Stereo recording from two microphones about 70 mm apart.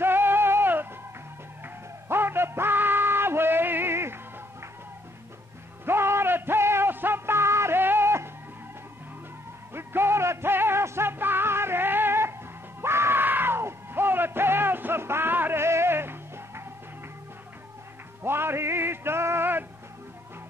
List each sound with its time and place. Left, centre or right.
0.0 s music: right
2.0 s music: right
5.9 s music: right
9.8 s music: right
12.8 s yell: right
18.2 s music: right